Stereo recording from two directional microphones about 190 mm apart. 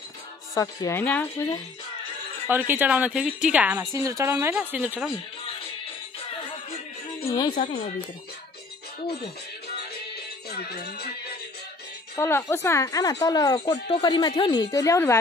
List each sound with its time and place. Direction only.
0.6 s speech: 15° left (ahead or behind)
2.5 s a woman's voice: 10° right (ahead or behind)
7.2 s speech: 20° left (ahead or behind)
7.5 s speech: 35° left (ahead or behind)
10.5 s music: 55° left (ahead or behind)
12.2 s a woman's voice: 15° left (ahead or behind)